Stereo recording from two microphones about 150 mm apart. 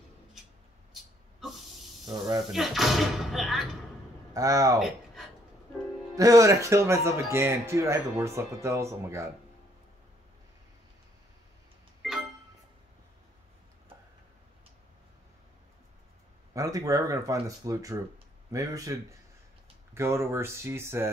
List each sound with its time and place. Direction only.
2.0 s speech: 25° right (ahead or behind)
2.5 s speech: centre (ahead or behind)
4.3 s speech: 20° right (ahead or behind)
4.7 s a sound: centre (ahead or behind)
6.1 s speech: 20° right (ahead or behind)
12.0 s music: centre (ahead or behind)
16.5 s speech: 20° right (ahead or behind)